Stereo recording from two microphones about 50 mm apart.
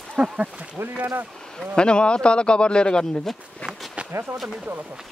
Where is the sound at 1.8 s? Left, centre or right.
Centre.